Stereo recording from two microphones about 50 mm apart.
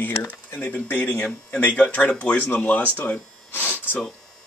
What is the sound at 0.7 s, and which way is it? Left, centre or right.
Speech, left.